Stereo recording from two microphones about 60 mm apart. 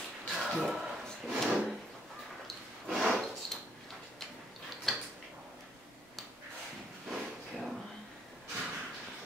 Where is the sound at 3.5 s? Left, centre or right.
Centre.